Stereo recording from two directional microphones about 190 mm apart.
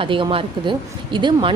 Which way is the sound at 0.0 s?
25° right (ahead or behind).